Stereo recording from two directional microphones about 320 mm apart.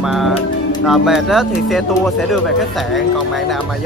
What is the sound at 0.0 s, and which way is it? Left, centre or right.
Music, centre.